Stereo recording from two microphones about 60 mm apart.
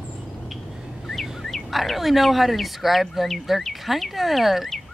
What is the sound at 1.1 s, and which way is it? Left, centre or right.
Speech, centre.